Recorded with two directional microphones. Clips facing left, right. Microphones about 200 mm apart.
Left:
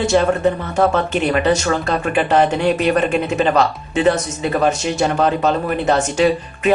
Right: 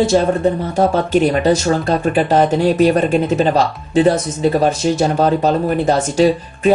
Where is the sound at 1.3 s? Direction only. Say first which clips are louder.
Right 2 dB; 30° right (ahead or behind).